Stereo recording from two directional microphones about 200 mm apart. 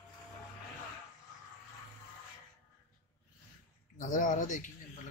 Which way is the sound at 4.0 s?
40° left (ahead or behind).